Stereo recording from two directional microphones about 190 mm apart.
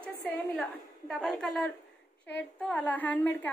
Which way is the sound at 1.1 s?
Centre (ahead or behind).